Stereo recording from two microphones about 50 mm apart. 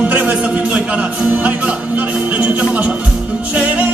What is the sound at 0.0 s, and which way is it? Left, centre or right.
Music, right.